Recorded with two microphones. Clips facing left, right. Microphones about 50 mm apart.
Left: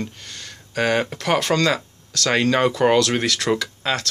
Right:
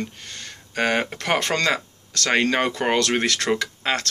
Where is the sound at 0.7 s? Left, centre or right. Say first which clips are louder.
Left 2 dB; right.